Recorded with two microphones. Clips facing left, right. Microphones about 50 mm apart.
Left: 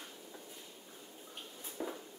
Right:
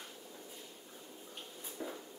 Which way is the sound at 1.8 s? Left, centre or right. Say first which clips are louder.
Left 2 dB; centre.